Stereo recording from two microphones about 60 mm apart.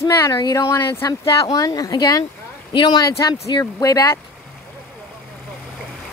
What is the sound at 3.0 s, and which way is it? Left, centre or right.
Speech, left.